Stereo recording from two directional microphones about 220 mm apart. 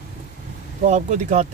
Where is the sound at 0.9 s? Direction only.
35° right (ahead or behind).